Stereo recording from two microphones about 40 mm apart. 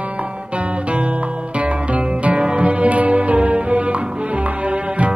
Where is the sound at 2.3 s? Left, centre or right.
Right.